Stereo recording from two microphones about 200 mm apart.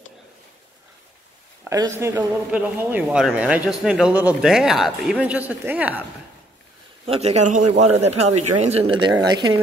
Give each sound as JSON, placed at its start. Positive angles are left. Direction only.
{"t": 1.6, "sound": "a man's voice", "side_deg": -15}
{"t": 7.1, "sound": "a man's voice", "side_deg": -30}
{"t": 8.9, "sound": "a woman's voice", "side_deg": -20}